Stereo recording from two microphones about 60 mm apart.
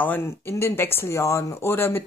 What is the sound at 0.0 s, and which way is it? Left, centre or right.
Speech, left.